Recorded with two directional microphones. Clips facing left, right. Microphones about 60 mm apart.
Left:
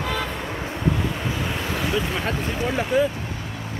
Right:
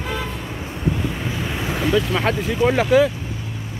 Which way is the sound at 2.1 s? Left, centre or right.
Right.